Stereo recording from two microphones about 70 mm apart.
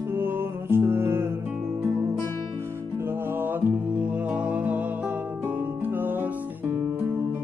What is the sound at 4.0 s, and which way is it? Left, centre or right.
Music, centre.